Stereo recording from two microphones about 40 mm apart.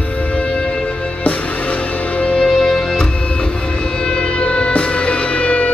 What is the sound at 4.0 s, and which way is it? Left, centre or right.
Siren, centre.